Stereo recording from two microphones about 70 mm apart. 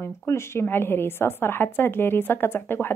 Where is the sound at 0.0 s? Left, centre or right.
Left.